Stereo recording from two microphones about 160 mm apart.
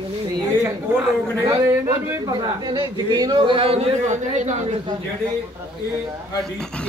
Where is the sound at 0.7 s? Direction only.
15° right (ahead or behind); by 3.8 s 35° right (ahead or behind).